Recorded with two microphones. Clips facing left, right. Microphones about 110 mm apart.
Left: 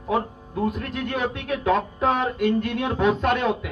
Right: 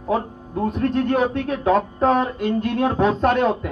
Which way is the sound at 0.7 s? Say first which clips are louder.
Right 8 dB; 40° right (ahead or behind).